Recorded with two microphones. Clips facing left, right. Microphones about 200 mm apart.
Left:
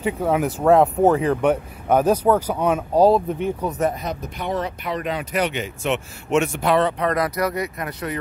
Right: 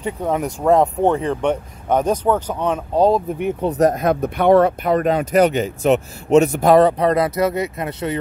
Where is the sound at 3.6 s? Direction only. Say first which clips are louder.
Right 11 dB; 40° right (ahead or behind).